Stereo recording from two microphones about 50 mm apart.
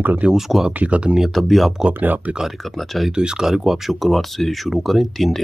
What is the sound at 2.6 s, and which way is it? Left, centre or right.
Speech, centre.